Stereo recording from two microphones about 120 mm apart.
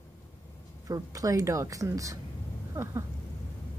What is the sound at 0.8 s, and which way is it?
Speech, 30° right (ahead or behind).